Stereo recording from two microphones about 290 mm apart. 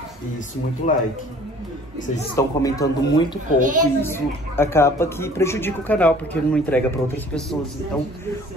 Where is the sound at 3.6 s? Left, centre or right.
Right.